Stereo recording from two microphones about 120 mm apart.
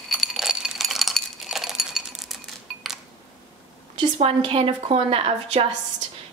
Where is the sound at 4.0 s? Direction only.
50° right (ahead or behind).